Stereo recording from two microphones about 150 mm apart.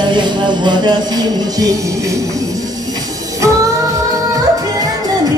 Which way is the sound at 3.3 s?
20° right (ahead or behind).